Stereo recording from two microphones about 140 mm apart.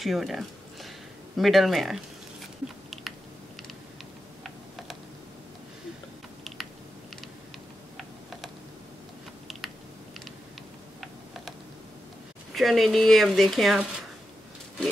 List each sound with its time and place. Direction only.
0.0 s a sound: centre (ahead or behind)
8.0 s typing: centre (ahead or behind)
12.5 s speech: centre (ahead or behind)